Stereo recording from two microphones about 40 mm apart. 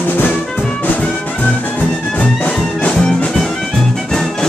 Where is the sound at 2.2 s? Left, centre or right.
Left.